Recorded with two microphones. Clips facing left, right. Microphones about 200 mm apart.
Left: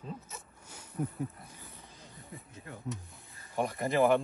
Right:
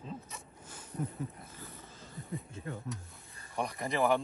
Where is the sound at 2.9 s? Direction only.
15° left (ahead or behind).